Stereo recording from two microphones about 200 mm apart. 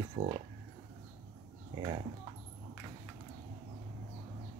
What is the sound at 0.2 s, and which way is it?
Speech, 25° right (ahead or behind).